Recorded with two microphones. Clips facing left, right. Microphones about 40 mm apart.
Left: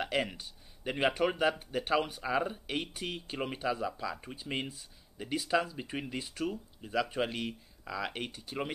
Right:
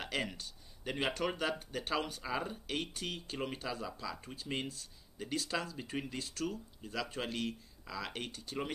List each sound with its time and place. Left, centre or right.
0.0 s speech: centre